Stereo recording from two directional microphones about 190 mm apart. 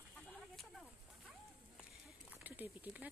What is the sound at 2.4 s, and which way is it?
Speech, 10° right (ahead or behind).